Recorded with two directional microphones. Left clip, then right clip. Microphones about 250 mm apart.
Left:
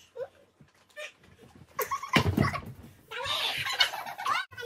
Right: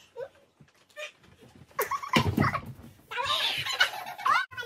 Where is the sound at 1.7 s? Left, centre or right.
Centre.